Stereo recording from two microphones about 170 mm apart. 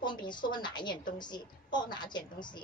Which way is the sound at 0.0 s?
25° left (ahead or behind).